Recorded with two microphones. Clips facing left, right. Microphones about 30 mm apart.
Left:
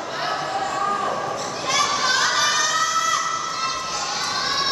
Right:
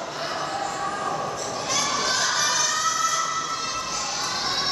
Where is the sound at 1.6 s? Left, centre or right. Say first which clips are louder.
Left 5 dB; left.